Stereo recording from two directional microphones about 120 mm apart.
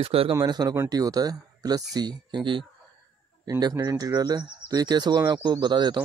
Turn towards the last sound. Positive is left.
turn(degrees=-40)  # may be behind; listen again after turning